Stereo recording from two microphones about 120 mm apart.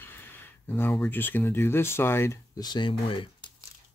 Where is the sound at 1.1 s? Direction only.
15° left (ahead or behind).